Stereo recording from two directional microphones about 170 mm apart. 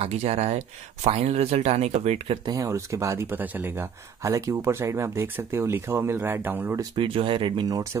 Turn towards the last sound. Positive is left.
turn(degrees=-20)  # may be behind; listen again after turning